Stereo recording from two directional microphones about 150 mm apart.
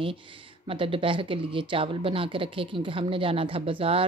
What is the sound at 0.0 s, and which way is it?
Speech, 35° right (ahead or behind).